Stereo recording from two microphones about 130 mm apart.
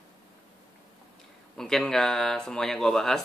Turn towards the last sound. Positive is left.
turn(degrees=5)  # may be behind; listen again after turning